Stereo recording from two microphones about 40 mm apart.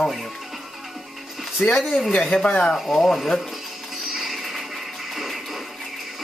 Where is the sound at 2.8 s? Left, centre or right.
Centre.